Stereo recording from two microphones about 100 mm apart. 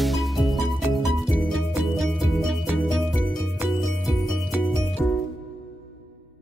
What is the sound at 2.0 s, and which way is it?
Music, centre (ahead or behind).